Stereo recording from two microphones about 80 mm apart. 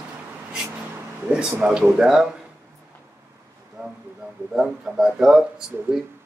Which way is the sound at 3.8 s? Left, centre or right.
Centre.